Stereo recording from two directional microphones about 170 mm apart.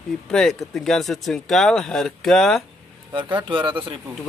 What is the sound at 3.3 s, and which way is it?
Speech, 30° right (ahead or behind).